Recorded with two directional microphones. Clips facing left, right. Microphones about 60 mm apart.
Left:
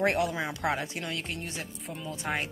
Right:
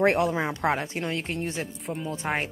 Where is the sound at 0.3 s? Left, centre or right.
Right.